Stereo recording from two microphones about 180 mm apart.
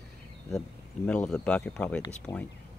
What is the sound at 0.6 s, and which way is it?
Speech, 5° left (ahead or behind).